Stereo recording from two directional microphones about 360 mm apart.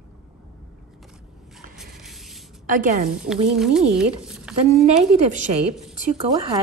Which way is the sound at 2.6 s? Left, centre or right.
Right.